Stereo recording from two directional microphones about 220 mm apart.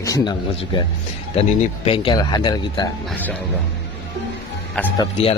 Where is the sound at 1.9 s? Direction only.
20° left (ahead or behind).